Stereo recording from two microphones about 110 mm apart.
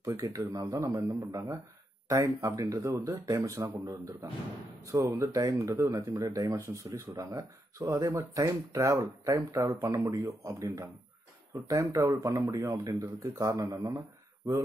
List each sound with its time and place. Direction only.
0.0 s speech: 30° right (ahead or behind)